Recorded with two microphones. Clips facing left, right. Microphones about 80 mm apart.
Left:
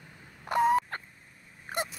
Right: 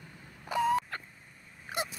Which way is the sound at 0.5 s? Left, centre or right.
Left.